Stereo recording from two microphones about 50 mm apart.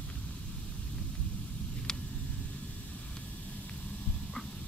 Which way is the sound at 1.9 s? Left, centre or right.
Centre.